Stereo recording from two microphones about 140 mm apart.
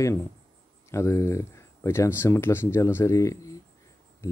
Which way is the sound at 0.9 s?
20° left (ahead or behind).